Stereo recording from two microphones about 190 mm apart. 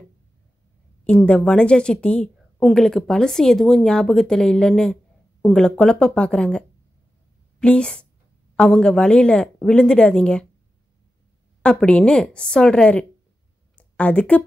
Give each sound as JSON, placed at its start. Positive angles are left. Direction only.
{"t": 1.0, "sound": "a woman's voice", "side_deg": 5}
{"t": 7.6, "sound": "a woman's voice", "side_deg": 5}
{"t": 11.6, "sound": "a woman's voice", "side_deg": 5}